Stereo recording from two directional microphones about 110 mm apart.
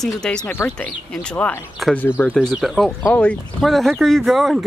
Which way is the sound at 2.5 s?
Centre (ahead or behind).